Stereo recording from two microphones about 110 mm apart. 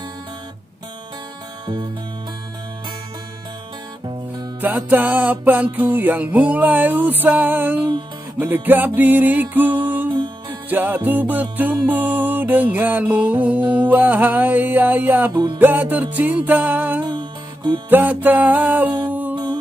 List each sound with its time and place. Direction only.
4.6 s music: 15° right (ahead or behind)
17.0 s music: 45° right (ahead or behind)
17.8 s music: 15° right (ahead or behind)
19.3 s music: 45° right (ahead or behind)